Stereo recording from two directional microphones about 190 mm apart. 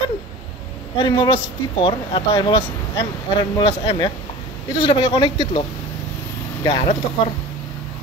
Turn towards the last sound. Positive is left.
turn(degrees=30)  # may be behind; listen again after turning